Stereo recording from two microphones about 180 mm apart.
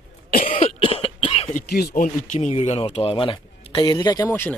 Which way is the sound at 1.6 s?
60° left (ahead or behind).